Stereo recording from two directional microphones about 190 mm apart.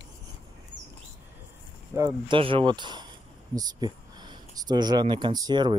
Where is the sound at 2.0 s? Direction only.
20° right (ahead or behind).